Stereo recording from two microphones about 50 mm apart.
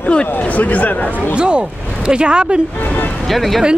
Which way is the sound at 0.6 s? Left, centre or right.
Left.